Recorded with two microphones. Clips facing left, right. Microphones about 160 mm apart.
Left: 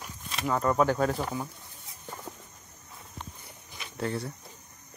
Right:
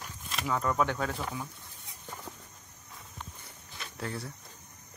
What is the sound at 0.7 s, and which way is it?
Speech, 35° left (ahead or behind).